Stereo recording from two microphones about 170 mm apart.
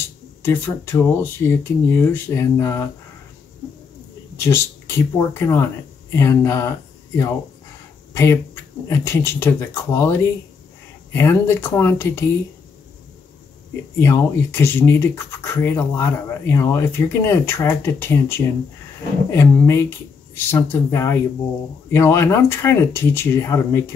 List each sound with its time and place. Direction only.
0.4 s speech: 15° left (ahead or behind)
4.4 s speech: 15° left (ahead or behind)
8.1 s a sound: 15° left (ahead or behind)
8.8 s speech: 15° left (ahead or behind)
11.1 s speech: 15° left (ahead or behind)
13.9 s speech: 15° left (ahead or behind)